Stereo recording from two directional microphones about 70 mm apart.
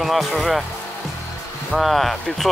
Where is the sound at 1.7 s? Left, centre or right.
Centre.